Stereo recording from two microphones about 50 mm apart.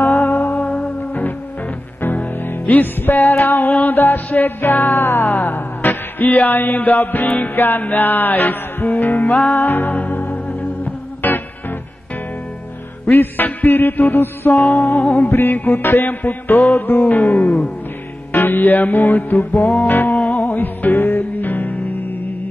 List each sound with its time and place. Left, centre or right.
0.0 s music: left
2.6 s music: left
9.3 s music: centre
9.6 s music: left
11.2 s music: left
13.1 s music: left
17.4 s music: left
18.3 s music: left